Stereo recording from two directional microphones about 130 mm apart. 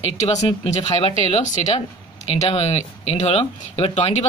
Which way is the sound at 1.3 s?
60° left (ahead or behind).